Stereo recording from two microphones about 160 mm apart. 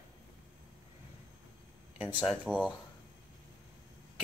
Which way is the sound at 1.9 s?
10° right (ahead or behind).